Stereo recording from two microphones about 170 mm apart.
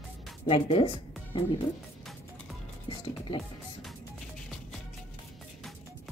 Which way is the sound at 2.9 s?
30° left (ahead or behind).